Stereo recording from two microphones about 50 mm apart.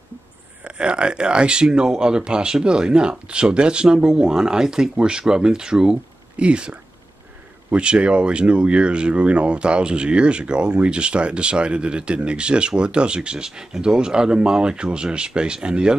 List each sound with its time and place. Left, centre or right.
0.7 s speech: right